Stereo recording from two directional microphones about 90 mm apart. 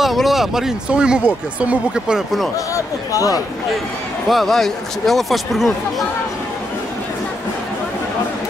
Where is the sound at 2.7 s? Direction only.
40° left (ahead or behind).